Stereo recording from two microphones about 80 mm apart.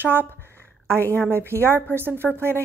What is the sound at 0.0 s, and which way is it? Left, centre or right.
Speech, right.